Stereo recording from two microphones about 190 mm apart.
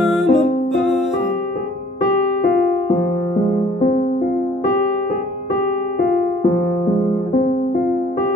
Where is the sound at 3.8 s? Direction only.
40° left (ahead or behind).